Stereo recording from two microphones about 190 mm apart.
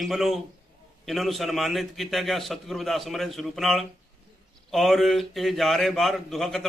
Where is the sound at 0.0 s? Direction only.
Centre (ahead or behind).